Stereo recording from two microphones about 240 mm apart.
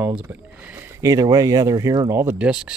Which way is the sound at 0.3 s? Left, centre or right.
Centre.